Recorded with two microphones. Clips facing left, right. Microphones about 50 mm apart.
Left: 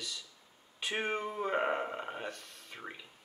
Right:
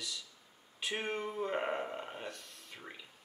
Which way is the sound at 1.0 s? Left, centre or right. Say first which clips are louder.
Left 3 dB; centre.